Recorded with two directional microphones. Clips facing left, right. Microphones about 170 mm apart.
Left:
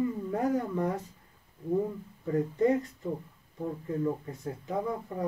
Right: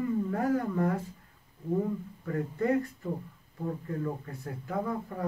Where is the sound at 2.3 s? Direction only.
20° left (ahead or behind).